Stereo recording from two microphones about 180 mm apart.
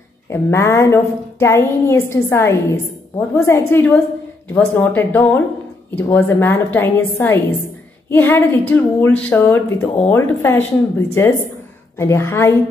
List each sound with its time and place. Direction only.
0.3 s a woman's voice: 15° left (ahead or behind)